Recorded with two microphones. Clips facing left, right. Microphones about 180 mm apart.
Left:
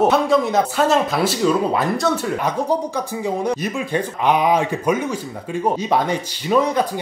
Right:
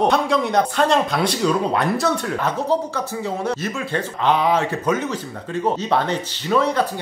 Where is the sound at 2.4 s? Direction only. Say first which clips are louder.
Right 1 dB; 15° left (ahead or behind).